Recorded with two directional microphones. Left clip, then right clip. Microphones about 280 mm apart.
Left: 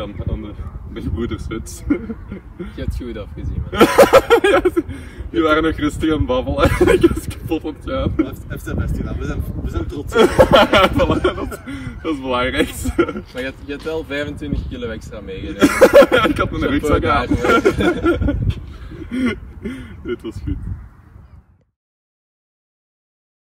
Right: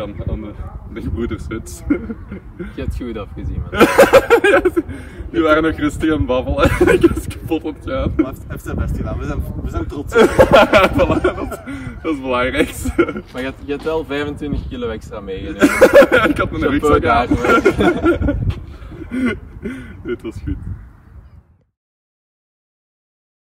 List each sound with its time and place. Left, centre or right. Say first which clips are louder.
0.0 s speech: right 2 dB; centre
2.8 s speech: right 3 dB; centre
3.7 s speech: right 1 dB; centre
13.2 s speech: right 1 dB; right
13.8 s speech: right 2 dB; centre
15.6 s speech: right 1 dB; centre
17.7 s speech: right 2 dB; centre